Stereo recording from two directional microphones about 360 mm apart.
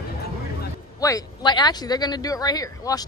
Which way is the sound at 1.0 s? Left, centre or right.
Centre.